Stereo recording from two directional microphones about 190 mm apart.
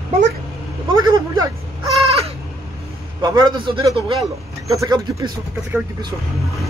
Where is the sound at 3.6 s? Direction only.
25° right (ahead or behind).